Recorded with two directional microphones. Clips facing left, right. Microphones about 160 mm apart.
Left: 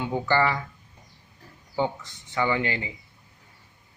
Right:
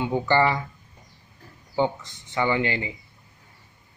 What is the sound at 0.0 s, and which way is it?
Speech, 20° right (ahead or behind).